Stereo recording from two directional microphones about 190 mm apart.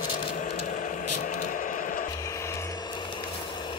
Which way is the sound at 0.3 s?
40° left (ahead or behind).